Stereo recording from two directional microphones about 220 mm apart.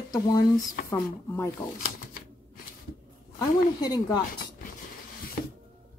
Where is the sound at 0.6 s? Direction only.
40° left (ahead or behind).